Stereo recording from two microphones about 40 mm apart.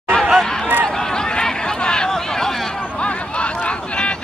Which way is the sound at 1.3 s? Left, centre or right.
Left.